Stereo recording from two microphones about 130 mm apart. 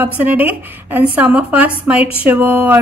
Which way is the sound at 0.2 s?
15° right (ahead or behind).